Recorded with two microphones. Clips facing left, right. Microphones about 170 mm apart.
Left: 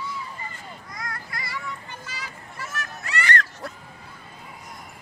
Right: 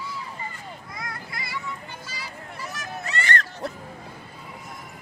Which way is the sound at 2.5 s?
20° right (ahead or behind).